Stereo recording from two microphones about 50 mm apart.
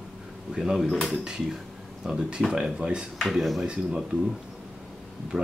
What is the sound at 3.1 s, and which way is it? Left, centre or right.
Speech, centre.